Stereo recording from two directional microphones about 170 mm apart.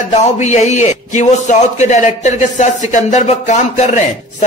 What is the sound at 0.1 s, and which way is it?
A man's voice, 40° left (ahead or behind).